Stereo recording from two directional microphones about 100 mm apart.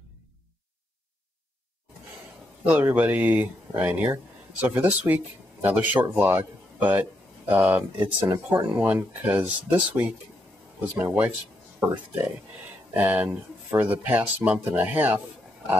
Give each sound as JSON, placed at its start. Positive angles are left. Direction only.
{"t": 2.6, "sound": "speech", "side_deg": -15}
{"t": 12.9, "sound": "speech", "side_deg": -15}